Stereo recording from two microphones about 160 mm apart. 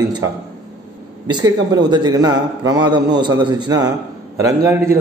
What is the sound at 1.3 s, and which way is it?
A man's voice, 25° right (ahead or behind).